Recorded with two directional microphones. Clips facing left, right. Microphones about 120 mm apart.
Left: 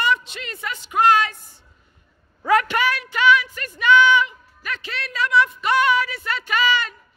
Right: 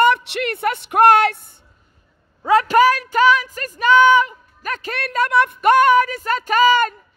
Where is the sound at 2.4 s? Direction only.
30° right (ahead or behind); by 6.9 s 45° right (ahead or behind).